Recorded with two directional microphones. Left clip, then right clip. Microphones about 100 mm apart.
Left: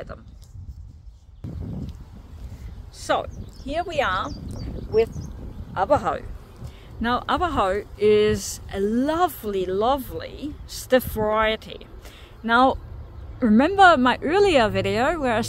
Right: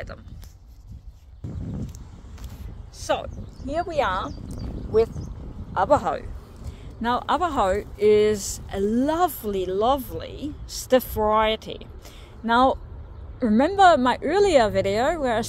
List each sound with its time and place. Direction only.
3.0 s speech: 25° left (ahead or behind)
5.8 s speech: 25° left (ahead or behind)
12.4 s speech: 35° left (ahead or behind)